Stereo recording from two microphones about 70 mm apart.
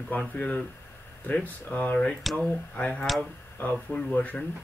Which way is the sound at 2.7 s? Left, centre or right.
Centre.